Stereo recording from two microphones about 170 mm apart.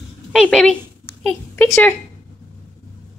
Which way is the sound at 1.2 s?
5° left (ahead or behind).